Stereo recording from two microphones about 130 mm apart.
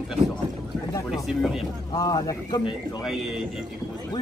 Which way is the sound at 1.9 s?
30° left (ahead or behind).